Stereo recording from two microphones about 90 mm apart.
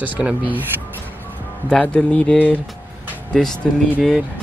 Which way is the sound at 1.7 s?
10° left (ahead or behind).